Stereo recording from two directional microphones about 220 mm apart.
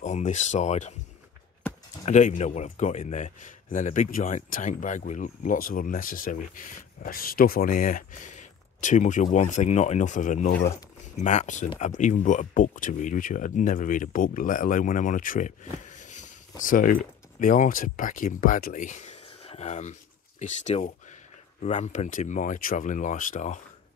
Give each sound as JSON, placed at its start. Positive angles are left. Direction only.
{"t": 0.0, "sound": "speech", "side_deg": 30}
{"t": 2.0, "sound": "speech", "side_deg": 30}